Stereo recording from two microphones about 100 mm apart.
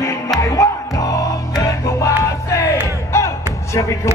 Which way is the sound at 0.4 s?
35° left (ahead or behind).